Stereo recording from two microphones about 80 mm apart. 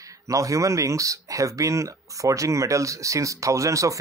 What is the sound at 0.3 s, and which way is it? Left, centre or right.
Speech, right.